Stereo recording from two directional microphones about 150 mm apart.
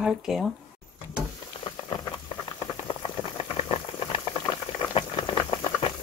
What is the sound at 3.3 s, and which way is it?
Boiling, 40° left (ahead or behind).